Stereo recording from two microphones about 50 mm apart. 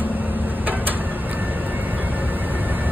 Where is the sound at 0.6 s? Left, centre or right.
Right.